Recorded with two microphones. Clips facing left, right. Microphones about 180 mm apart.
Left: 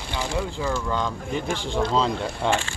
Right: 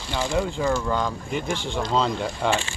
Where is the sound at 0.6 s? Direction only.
15° right (ahead or behind).